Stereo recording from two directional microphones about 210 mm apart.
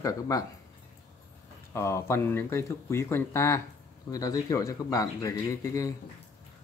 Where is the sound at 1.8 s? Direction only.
15° left (ahead or behind).